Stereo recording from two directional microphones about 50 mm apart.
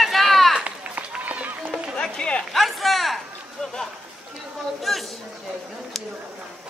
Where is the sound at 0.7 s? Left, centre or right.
Right.